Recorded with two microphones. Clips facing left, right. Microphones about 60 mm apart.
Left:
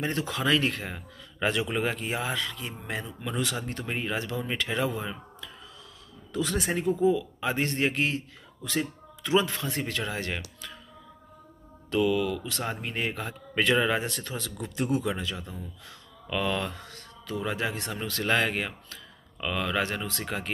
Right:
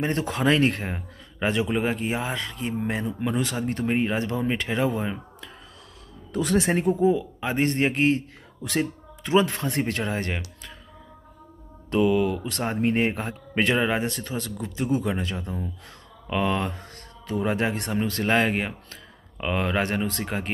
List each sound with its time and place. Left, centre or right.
0.0 s a man's voice: right
8.6 s a man's voice: right
11.9 s a man's voice: right